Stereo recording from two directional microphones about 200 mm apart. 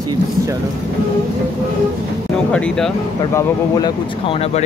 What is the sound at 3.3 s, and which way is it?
Speech, 20° left (ahead or behind).